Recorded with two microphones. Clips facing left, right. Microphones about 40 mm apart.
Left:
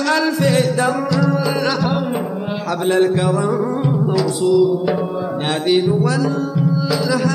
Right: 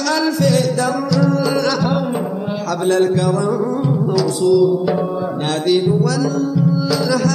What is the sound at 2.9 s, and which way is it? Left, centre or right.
Music, left.